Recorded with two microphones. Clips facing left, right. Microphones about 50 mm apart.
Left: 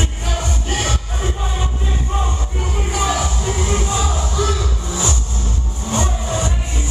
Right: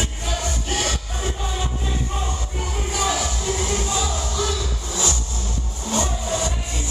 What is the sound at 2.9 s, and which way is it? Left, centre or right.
Music, left.